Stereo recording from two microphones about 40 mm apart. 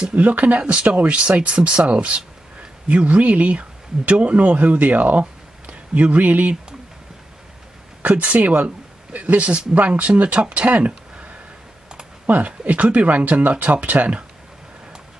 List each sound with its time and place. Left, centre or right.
0.0 s speech: right
8.0 s speech: right
10.9 s a sound: right
12.3 s speech: right